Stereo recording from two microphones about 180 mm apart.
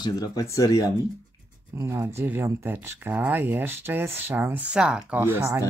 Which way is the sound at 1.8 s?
15° right (ahead or behind).